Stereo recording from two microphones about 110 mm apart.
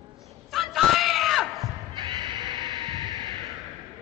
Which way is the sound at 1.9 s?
45° right (ahead or behind).